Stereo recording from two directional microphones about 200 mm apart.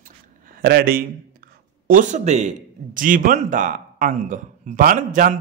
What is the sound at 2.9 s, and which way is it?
A man's voice, 45° right (ahead or behind).